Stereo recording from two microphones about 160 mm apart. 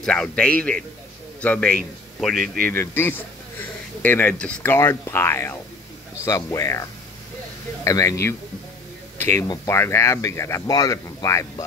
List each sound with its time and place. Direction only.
0.0 s a man's voice: 5° left (ahead or behind)
2.6 s speech: 15° left (ahead or behind)